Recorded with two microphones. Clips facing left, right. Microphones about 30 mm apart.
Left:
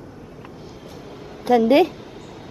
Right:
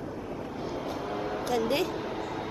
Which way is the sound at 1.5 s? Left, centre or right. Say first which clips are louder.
Left 14 dB; left.